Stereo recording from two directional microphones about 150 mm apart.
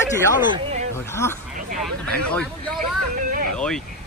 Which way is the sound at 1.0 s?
15° left (ahead or behind).